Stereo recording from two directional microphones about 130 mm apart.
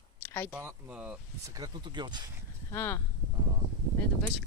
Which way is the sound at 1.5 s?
30° right (ahead or behind).